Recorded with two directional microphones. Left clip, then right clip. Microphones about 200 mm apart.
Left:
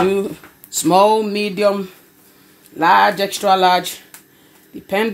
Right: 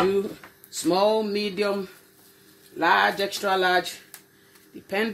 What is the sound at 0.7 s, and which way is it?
Speech, 45° left (ahead or behind).